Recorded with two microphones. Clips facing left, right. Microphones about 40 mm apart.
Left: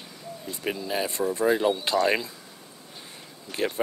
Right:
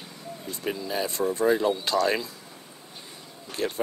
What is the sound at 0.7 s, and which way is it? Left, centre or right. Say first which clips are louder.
Speech: even; centre.